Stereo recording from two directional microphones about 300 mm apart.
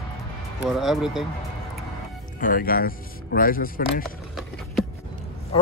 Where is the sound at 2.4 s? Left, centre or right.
Left.